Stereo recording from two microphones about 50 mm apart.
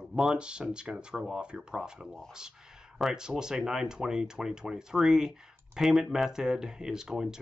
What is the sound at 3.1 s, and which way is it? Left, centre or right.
Speech, centre.